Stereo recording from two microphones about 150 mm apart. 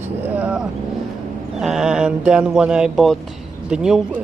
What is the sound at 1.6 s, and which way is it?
Speech, 5° right (ahead or behind).